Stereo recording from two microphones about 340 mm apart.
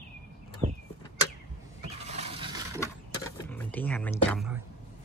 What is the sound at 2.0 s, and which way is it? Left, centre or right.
Roaring cats, centre.